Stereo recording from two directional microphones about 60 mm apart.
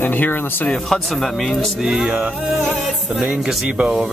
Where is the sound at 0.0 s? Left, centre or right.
Left.